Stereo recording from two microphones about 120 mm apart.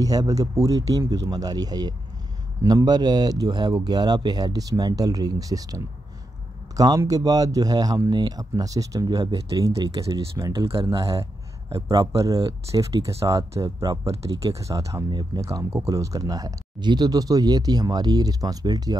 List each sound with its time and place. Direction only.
0.0 s speech: 30° right (ahead or behind)
6.8 s speech: 30° right (ahead or behind)